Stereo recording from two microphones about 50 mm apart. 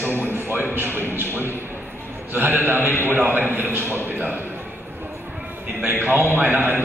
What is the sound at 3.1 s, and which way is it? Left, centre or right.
A man's voice, right.